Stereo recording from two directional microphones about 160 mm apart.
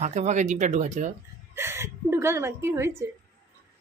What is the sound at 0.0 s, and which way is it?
Speech, 45° right (ahead or behind).